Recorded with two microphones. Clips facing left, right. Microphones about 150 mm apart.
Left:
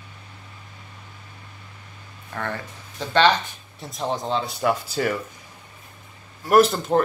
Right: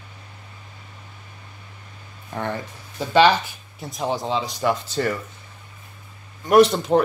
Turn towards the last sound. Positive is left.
turn(degrees=0)  # may be behind; listen again after turning